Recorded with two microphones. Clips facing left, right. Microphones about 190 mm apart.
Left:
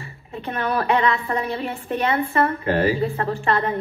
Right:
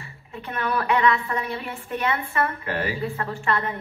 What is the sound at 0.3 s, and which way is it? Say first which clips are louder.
A woman's voice: left 3 dB; 30° left (ahead or behind).